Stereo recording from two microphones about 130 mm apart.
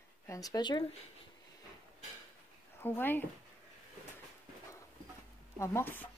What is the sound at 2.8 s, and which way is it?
Speech, 15° left (ahead or behind).